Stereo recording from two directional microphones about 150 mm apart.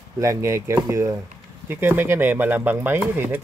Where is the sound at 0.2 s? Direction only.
20° right (ahead or behind).